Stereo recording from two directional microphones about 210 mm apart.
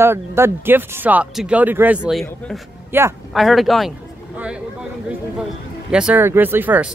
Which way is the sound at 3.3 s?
Centre (ahead or behind).